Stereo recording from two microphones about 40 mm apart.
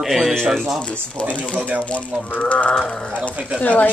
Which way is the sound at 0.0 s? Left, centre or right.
Centre.